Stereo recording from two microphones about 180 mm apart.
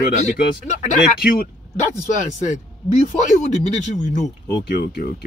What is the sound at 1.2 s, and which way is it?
Speech, 55° left (ahead or behind).